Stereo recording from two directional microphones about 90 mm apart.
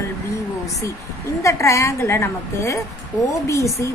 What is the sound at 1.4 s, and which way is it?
A woman's voice, 35° left (ahead or behind).